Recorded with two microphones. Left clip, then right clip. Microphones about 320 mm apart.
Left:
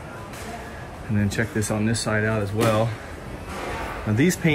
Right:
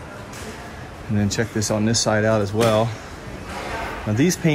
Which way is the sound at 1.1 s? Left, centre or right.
Centre.